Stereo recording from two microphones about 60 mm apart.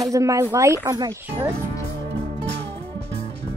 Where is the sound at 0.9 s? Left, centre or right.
Right.